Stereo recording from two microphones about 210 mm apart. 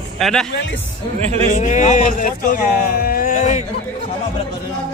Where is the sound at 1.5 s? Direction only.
35° left (ahead or behind).